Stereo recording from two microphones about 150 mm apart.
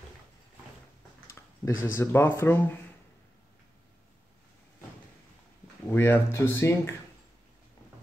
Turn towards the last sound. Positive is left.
turn(degrees=15)  # may be behind; listen again after turning